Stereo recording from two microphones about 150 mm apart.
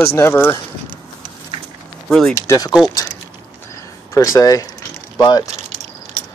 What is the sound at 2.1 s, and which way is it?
Speech, 5° left (ahead or behind).